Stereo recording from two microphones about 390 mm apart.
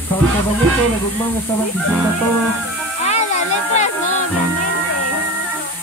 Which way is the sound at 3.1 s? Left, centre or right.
Centre.